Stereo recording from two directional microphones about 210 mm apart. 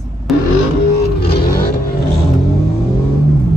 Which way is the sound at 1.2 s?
50° left (ahead or behind).